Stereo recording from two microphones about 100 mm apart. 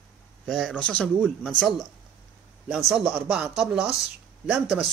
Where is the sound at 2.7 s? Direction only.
10° right (ahead or behind).